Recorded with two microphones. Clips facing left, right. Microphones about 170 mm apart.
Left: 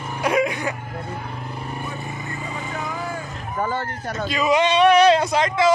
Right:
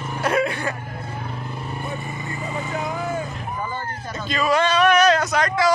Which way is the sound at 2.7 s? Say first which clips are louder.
Right 3 dB; 20° right (ahead or behind).